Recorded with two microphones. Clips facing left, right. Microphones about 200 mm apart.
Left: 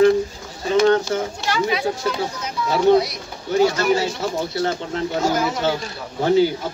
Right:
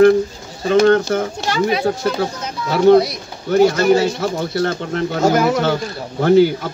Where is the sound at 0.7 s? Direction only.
55° right (ahead or behind).